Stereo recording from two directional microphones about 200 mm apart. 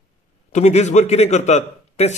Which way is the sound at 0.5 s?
35° left (ahead or behind).